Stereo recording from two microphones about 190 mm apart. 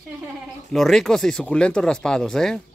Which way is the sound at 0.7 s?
Centre (ahead or behind).